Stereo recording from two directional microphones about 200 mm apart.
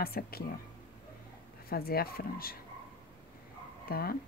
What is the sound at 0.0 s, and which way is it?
Speech, 50° left (ahead or behind).